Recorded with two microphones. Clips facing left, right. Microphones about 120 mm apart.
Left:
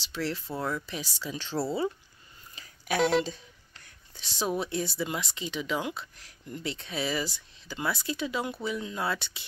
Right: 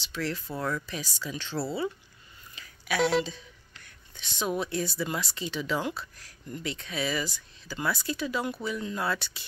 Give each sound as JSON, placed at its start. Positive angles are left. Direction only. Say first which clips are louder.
{"t": 0.0, "sound": "speech", "louder": "even", "side_deg": 30}
{"t": 0.6, "sound": "speech", "louder": "right 1 dB", "side_deg": 15}
{"t": 0.8, "sound": "speech", "louder": "even", "side_deg": 30}
{"t": 2.5, "sound": "a sound", "louder": "left 1 dB", "side_deg": 35}
{"t": 3.0, "sound": "speech", "louder": "even", "side_deg": 0}
{"t": 3.3, "sound": "a sound", "louder": "left 2 dB", "side_deg": 35}
{"t": 4.6, "sound": "speech", "louder": "even", "side_deg": 25}